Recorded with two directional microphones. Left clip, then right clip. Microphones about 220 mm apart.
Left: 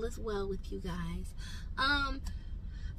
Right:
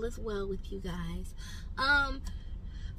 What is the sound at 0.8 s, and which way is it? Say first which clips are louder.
Speech: even; centre (ahead or behind).